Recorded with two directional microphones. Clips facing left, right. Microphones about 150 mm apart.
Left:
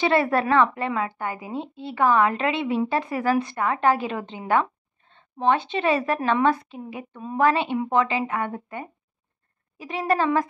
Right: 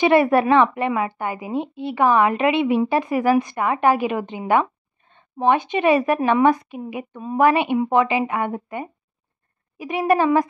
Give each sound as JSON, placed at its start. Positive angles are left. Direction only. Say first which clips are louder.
{"t": 0.0, "sound": "a woman's voice", "louder": "right 5 dB", "side_deg": -20}